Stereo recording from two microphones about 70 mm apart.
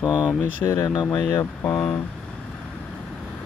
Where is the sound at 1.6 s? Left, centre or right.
Left.